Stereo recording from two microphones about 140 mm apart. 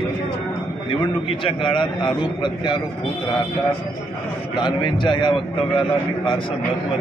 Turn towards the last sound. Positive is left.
turn(degrees=35)  # may be behind; listen again after turning